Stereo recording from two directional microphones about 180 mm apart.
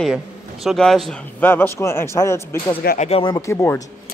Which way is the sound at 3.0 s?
35° left (ahead or behind).